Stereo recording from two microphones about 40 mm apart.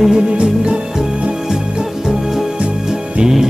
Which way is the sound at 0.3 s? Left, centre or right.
Right.